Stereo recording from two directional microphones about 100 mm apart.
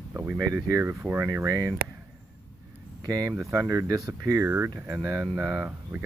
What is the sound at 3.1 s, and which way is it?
Speech, 30° right (ahead or behind).